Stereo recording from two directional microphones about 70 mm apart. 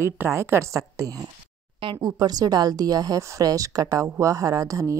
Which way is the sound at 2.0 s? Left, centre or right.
Right.